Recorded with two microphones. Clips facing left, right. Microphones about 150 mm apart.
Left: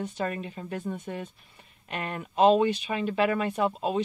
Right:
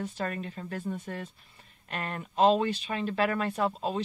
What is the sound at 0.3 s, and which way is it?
Speech, 10° left (ahead or behind).